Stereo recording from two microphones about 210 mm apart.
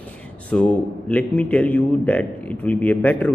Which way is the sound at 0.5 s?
5° left (ahead or behind).